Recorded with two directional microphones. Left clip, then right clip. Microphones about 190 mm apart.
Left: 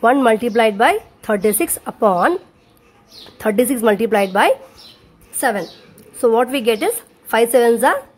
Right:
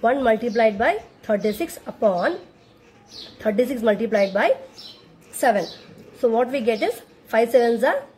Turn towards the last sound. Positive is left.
turn(degrees=40)  # may be behind; listen again after turning